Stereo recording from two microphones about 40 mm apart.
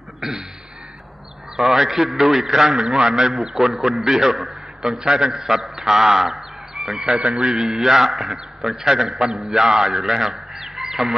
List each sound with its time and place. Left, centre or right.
0.2 s a sound: centre
1.6 s a man's voice: centre
7.2 s a man's voice: right
7.5 s a man's voice: centre